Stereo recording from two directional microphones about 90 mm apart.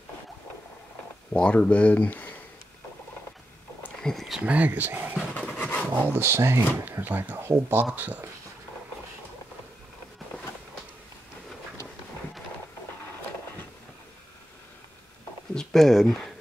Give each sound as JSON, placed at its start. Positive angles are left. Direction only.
{"t": 1.3, "sound": "speech", "side_deg": 15}
{"t": 4.0, "sound": "speech", "side_deg": 5}
{"t": 4.4, "sound": "speech", "side_deg": -15}
{"t": 5.3, "sound": "dog", "side_deg": 15}
{"t": 5.9, "sound": "speech", "side_deg": -20}
{"t": 15.5, "sound": "speech", "side_deg": 5}